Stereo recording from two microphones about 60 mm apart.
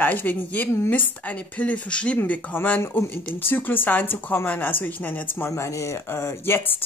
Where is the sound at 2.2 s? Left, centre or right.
Left.